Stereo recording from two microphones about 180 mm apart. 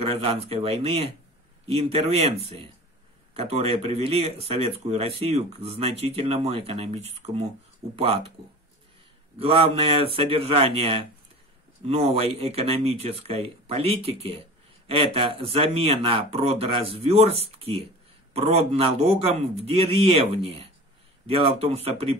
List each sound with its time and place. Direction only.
0.0 s speech: 35° right (ahead or behind)
9.4 s speech: 30° right (ahead or behind)